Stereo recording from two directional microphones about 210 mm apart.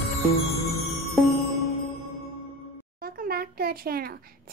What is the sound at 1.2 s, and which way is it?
Music, centre (ahead or behind).